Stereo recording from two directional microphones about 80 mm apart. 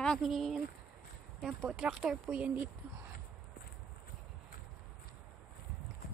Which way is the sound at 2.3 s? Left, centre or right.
Centre.